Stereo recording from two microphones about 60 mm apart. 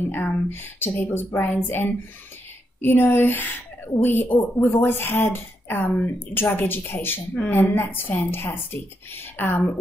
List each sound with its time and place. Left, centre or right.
0.1 s a woman's voice: left